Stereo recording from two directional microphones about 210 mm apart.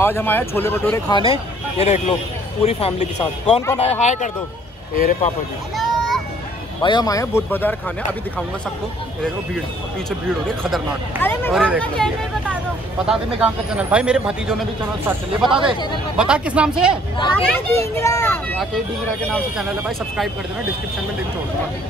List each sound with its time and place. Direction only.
0.0 s speech: 10° left (ahead or behind); by 5.3 s 45° left (ahead or behind)
5.8 s a sound: centre (ahead or behind)
6.8 s speech: 20° left (ahead or behind)
11.5 s speech: 5° right (ahead or behind)
17.5 s speech: 15° left (ahead or behind)